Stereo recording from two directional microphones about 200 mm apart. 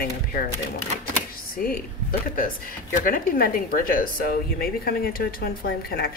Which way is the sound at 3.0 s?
45° left (ahead or behind).